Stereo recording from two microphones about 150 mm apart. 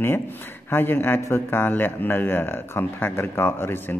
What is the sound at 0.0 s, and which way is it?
Speech, 15° left (ahead or behind).